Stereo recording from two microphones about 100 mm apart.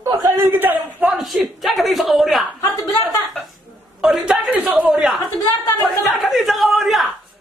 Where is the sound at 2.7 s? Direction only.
35° left (ahead or behind).